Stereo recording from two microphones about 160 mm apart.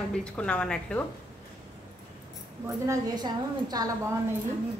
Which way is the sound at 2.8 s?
25° right (ahead or behind).